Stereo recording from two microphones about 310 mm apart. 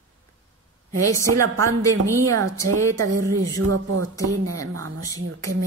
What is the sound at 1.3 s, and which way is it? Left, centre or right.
Speech, right.